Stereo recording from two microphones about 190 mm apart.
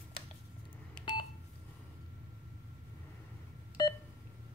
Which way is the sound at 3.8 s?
20° left (ahead or behind).